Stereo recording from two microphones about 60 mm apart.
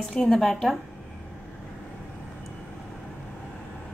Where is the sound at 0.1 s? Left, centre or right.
Centre.